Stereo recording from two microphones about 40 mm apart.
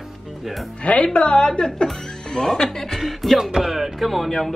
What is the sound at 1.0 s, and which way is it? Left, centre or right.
A woman's voice, left.